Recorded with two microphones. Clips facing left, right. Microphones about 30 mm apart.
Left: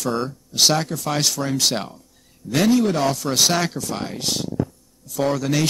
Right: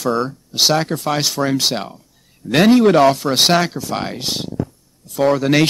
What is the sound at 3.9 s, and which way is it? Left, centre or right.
Speech, right.